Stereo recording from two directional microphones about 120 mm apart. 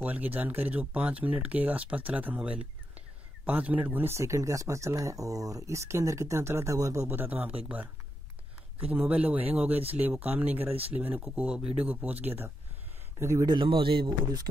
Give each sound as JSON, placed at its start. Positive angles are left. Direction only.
{"t": 0.0, "sound": "speech", "side_deg": -15}
{"t": 13.5, "sound": "speech", "side_deg": -45}